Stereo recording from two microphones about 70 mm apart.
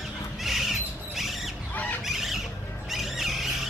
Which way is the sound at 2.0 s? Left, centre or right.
Centre.